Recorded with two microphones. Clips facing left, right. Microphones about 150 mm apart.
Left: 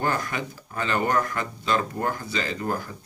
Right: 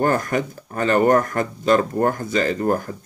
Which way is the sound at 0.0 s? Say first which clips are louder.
Right 7 dB; 45° right (ahead or behind).